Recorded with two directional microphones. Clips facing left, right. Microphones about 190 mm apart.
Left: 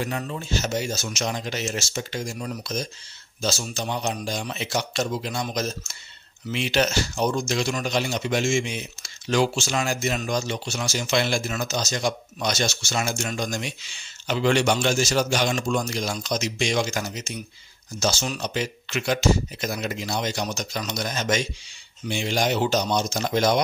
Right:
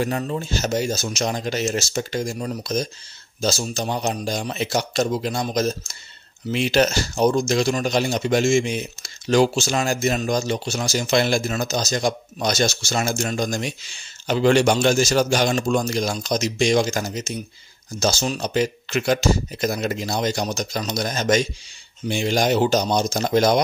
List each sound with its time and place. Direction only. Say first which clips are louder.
0.0 s speech: right 5 dB; 40° right (ahead or behind)